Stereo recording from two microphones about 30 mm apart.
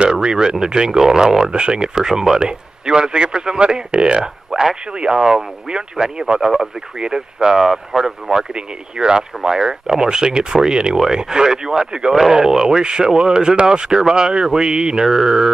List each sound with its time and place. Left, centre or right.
0.0 s a man's voice: right
4.2 s speech: right
7.5 s speech: centre
8.3 s speech: right
12.1 s speech: centre